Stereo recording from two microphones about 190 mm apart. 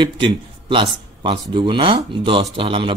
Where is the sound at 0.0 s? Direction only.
25° right (ahead or behind).